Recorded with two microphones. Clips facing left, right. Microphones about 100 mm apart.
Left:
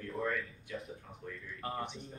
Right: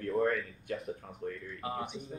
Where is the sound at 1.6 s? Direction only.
5° right (ahead or behind).